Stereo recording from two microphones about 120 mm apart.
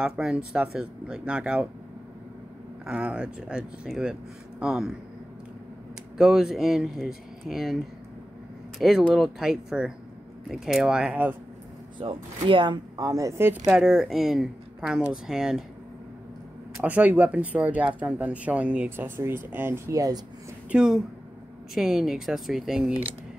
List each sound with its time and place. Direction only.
0.0 s speech: 5° right (ahead or behind)
2.9 s speech: 10° right (ahead or behind)
6.1 s speech: 5° right (ahead or behind)
12.0 s speech: 45° right (ahead or behind); by 13.5 s 30° right (ahead or behind)
13.7 s speech: 5° right (ahead or behind)
16.8 s speech: 10° right (ahead or behind)
19.9 s speech: 30° right (ahead or behind)
20.7 s speech: 5° right (ahead or behind)